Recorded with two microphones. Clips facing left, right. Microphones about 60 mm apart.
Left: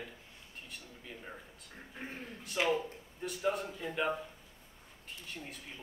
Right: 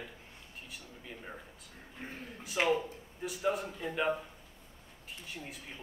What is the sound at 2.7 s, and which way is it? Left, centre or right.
Speech, centre.